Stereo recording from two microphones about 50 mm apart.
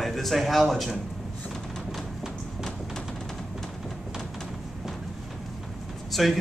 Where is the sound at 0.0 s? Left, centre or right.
Centre.